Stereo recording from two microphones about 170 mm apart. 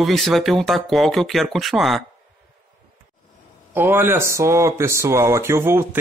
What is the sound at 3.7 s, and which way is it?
Speech, 10° right (ahead or behind).